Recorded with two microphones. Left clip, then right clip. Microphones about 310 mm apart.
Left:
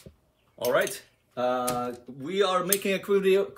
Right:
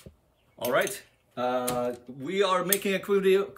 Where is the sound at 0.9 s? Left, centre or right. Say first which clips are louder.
Left 2 dB; left.